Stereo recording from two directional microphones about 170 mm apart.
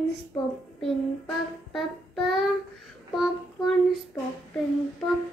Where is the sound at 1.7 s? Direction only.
Centre (ahead or behind).